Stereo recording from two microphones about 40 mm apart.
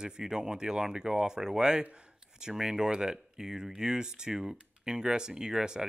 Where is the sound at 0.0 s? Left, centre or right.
Centre.